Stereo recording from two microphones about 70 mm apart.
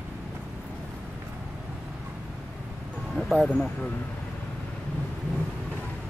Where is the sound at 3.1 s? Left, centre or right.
Centre.